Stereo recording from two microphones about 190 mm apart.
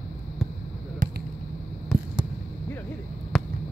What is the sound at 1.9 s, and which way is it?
Fireworks, centre (ahead or behind).